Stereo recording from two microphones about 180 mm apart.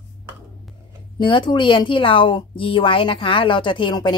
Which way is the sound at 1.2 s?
25° left (ahead or behind).